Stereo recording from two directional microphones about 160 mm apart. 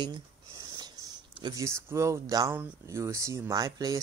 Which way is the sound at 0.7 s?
25° right (ahead or behind).